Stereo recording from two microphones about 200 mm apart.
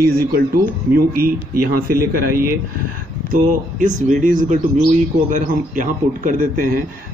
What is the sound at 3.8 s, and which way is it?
A man's voice, 40° right (ahead or behind).